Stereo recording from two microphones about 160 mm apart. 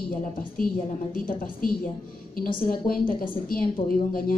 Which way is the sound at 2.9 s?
65° left (ahead or behind).